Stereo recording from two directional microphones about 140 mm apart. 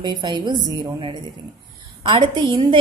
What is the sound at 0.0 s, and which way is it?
A woman's voice, 30° right (ahead or behind).